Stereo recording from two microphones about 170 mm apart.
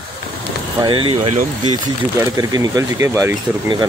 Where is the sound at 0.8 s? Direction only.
30° right (ahead or behind).